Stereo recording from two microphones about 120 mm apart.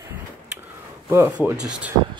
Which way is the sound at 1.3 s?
10° right (ahead or behind).